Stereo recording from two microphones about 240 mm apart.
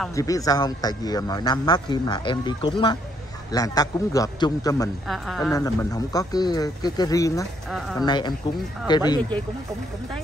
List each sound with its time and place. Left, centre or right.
0.1 s a man's voice: centre
5.0 s a woman's voice: centre
5.5 s a man's voice: centre